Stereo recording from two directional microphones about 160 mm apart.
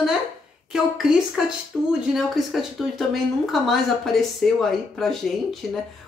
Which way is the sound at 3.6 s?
Centre (ahead or behind).